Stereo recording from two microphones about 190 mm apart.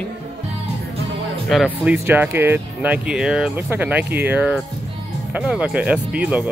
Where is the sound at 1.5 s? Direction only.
Centre (ahead or behind).